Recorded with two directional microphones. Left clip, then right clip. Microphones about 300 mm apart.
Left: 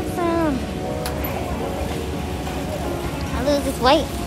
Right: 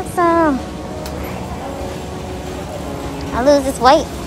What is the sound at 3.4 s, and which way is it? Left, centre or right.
Speech, centre.